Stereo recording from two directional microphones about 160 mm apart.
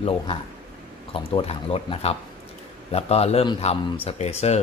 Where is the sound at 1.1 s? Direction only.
35° left (ahead or behind).